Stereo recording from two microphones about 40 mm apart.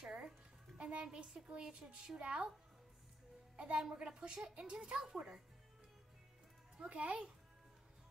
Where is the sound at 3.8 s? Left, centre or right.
Centre.